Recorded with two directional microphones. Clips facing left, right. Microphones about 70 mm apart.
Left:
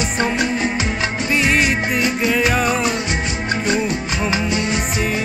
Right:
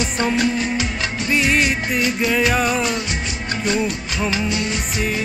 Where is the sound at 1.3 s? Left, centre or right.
Centre.